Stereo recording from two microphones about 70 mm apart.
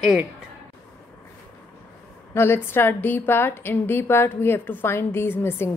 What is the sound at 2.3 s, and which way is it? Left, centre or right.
A woman's voice, left.